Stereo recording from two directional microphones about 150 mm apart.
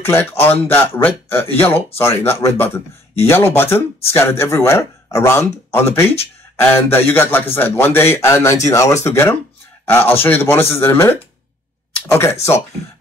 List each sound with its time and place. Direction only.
0.0 s speech: 15° left (ahead or behind)